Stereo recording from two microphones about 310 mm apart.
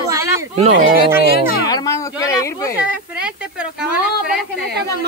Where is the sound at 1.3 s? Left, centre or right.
Left.